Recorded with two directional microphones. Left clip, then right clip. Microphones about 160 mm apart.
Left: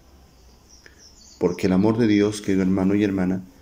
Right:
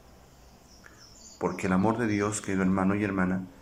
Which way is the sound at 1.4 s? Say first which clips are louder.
Left 7 dB; 50° left (ahead or behind).